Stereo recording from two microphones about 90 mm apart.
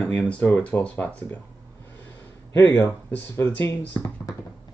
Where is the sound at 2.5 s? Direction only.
30° left (ahead or behind).